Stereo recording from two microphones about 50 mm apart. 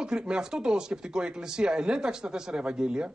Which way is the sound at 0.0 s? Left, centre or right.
Centre.